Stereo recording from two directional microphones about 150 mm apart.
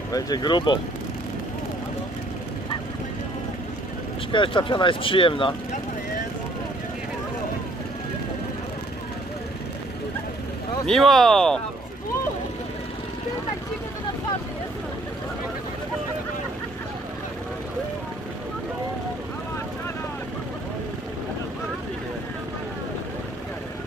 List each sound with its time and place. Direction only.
0.1 s speech: 25° left (ahead or behind)
4.3 s speech: 35° left (ahead or behind)
10.9 s speech: centre (ahead or behind)